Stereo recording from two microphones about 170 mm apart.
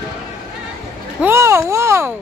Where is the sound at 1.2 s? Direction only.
15° right (ahead or behind).